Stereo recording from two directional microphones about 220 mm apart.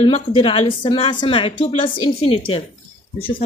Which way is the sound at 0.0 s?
20° left (ahead or behind).